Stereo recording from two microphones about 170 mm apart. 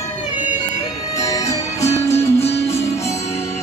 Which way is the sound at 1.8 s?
15° left (ahead or behind).